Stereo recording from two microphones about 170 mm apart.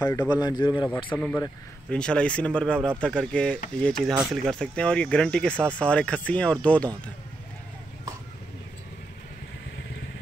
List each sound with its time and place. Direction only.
0.3 s a man's voice: 25° left (ahead or behind)
1.1 s speech: 10° left (ahead or behind)